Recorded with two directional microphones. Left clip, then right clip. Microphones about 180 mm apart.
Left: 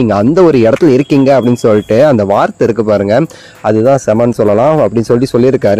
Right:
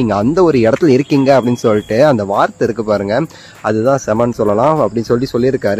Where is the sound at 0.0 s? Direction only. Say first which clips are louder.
Left 4 dB; 25° left (ahead or behind).